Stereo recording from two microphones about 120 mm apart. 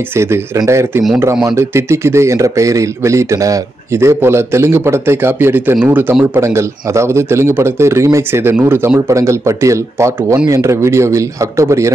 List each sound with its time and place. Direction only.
0.1 s speech: 20° right (ahead or behind)